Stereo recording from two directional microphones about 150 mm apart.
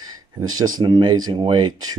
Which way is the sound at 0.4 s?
25° right (ahead or behind).